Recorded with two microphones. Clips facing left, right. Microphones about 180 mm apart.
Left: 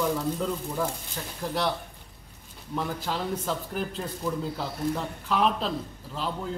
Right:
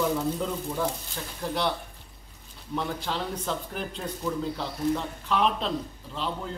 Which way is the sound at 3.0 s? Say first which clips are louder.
Left 1 dB; 5° left (ahead or behind).